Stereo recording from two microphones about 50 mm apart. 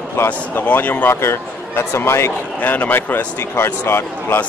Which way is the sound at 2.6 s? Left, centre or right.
Left.